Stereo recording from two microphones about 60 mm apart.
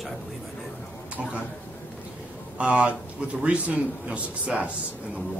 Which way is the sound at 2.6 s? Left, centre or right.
Right.